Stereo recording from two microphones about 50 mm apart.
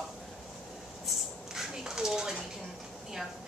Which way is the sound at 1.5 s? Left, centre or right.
Centre.